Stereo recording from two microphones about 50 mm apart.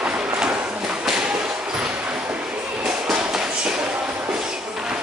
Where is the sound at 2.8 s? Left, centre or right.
Centre.